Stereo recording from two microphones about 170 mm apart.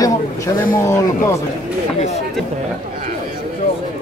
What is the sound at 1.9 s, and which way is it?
Speech, 40° left (ahead or behind).